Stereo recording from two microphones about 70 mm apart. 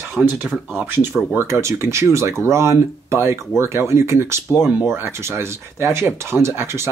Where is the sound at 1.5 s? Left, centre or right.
Right.